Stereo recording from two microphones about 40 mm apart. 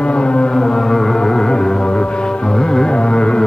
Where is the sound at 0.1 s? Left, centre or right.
Left.